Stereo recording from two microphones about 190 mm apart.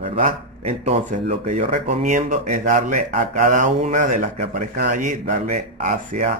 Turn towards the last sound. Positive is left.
turn(degrees=-40)  # may be behind; listen again after turning